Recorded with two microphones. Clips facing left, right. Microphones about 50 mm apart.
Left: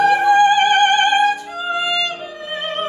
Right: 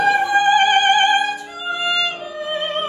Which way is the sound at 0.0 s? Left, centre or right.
Centre.